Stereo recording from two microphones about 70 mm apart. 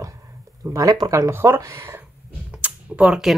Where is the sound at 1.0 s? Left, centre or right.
Right.